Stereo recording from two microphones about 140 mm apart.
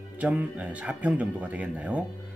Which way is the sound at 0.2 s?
10° right (ahead or behind).